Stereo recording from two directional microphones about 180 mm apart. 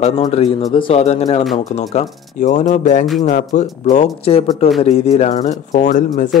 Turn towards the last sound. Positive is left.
turn(degrees=45)  # may be behind; listen again after turning